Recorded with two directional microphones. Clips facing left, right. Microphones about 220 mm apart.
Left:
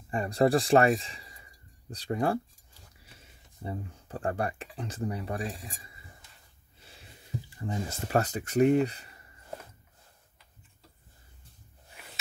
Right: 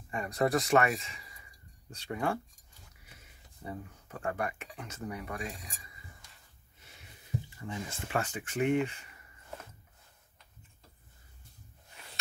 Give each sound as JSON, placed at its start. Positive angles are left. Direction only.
{"t": 0.1, "sound": "speech", "side_deg": 30}
{"t": 3.6, "sound": "speech", "side_deg": 30}
{"t": 6.8, "sound": "a sound", "side_deg": 30}